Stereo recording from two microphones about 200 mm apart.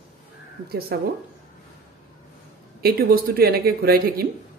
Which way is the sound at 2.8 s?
50° right (ahead or behind).